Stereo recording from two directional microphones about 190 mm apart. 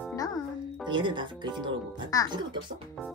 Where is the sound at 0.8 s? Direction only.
25° right (ahead or behind).